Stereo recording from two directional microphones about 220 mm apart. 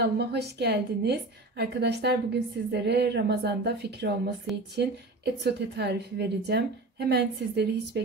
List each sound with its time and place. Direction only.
0.0 s a woman's voice: 50° right (ahead or behind)